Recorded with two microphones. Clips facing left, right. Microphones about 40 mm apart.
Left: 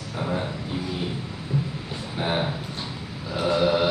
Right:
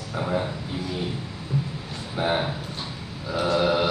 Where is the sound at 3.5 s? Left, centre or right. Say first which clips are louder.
Left 1 dB; centre.